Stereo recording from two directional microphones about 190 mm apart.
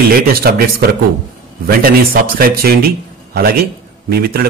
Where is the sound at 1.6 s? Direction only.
50° right (ahead or behind).